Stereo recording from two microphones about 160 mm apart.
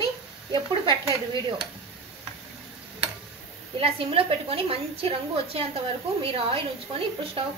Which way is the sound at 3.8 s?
40° right (ahead or behind).